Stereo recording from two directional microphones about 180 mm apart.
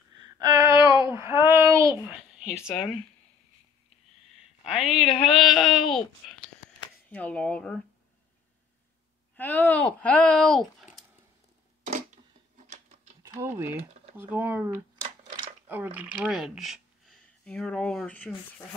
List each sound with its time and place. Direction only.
0.2 s a sound: 20° right (ahead or behind)
1.0 s child singing: 15° right (ahead or behind)
2.0 s speech: 5° right (ahead or behind)
4.7 s speech: centre (ahead or behind)
9.4 s speech: 10° left (ahead or behind)
13.2 s speech: 15° right (ahead or behind); by 18.3 s 10° left (ahead or behind)